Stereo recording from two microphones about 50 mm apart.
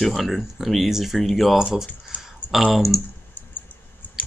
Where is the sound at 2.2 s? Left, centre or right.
Centre.